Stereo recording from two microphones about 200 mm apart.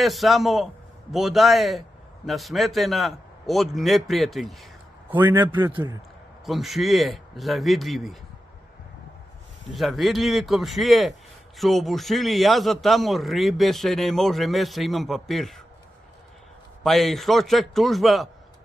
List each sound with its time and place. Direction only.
0.0 s a man's voice: centre (ahead or behind)
5.1 s a man's voice: 10° right (ahead or behind)
5.7 s a man's voice: 25° right (ahead or behind)
6.4 s a man's voice: centre (ahead or behind)
9.7 s a man's voice: centre (ahead or behind)
16.8 s a man's voice: centre (ahead or behind)